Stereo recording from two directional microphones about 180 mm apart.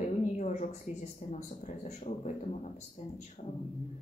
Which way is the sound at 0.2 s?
40° left (ahead or behind).